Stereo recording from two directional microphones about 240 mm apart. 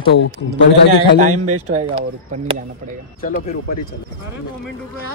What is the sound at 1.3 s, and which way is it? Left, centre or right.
Speech, right.